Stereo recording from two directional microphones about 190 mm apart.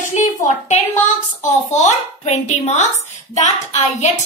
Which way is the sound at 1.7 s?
35° left (ahead or behind).